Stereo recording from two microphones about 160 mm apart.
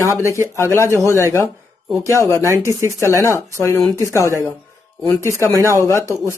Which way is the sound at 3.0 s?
20° left (ahead or behind).